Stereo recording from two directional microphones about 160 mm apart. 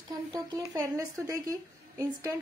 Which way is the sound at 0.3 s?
20° right (ahead or behind).